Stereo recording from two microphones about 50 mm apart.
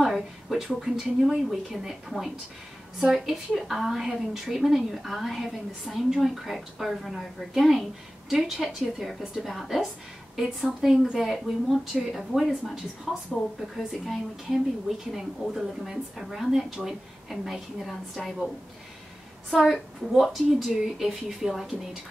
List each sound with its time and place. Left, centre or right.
0.0 s a woman's voice: centre
19.5 s a woman's voice: centre